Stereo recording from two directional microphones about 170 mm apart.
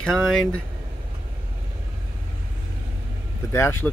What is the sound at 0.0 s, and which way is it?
Speech, 5° left (ahead or behind).